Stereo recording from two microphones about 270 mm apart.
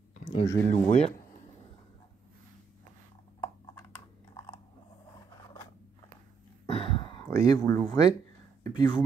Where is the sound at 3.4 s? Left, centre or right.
Centre.